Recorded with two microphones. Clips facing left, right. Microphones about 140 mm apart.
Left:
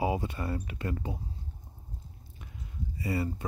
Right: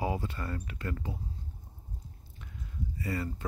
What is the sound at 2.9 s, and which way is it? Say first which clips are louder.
Speech: left 4 dB; 15° left (ahead or behind).